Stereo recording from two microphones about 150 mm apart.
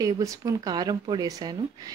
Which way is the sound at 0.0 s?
20° right (ahead or behind).